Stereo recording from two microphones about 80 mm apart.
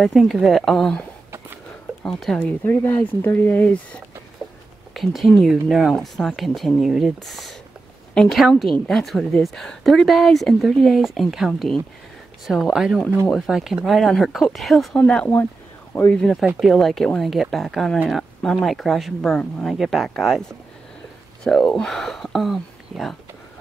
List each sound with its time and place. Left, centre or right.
0.0 s speech: centre
2.0 s speech: centre
2.6 s speech: left
4.9 s speech: centre
15.0 s speech: centre
21.5 s speech: centre